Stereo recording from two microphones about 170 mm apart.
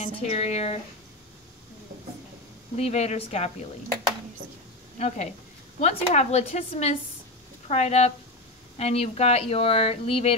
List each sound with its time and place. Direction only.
0.0 s speech: 40° left (ahead or behind)
2.8 s speech: 40° left (ahead or behind)
4.9 s a woman's voice: 40° left (ahead or behind)